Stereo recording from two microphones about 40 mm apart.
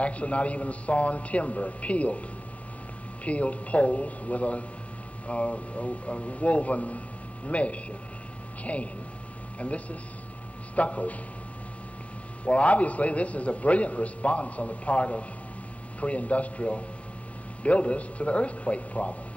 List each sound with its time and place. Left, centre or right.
0.0 s a man's voice: left
3.3 s a man's voice: left
12.4 s a man's voice: left